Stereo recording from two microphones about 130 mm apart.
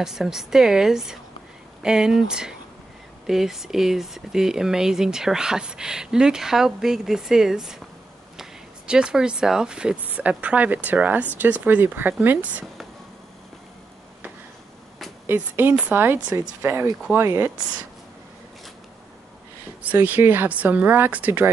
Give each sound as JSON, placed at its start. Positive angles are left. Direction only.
{"t": 0.0, "sound": "speech", "side_deg": -5}
{"t": 15.2, "sound": "speech", "side_deg": -15}
{"t": 19.8, "sound": "speech", "side_deg": -10}